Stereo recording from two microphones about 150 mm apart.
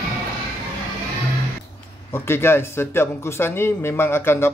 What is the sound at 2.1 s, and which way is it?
A man's voice, 15° left (ahead or behind).